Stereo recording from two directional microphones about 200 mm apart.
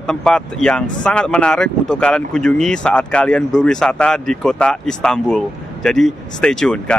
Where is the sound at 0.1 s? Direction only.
5° left (ahead or behind).